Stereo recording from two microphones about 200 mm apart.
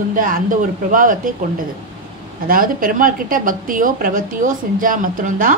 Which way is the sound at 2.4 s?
45° right (ahead or behind).